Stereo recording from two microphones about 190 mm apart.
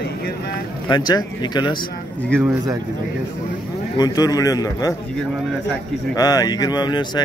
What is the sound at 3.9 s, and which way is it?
Speech, 20° left (ahead or behind).